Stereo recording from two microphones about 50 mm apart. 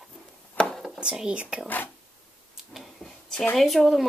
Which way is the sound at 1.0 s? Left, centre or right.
Centre.